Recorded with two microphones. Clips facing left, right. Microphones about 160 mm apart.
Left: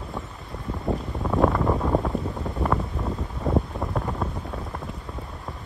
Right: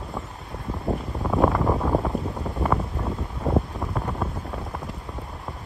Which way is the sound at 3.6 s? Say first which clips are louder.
Left 2 dB; centre (ahead or behind).